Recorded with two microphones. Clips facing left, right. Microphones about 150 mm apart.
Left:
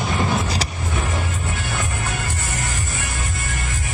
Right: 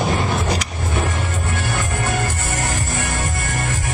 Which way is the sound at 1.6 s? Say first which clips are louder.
Right 4 dB; 50° right (ahead or behind).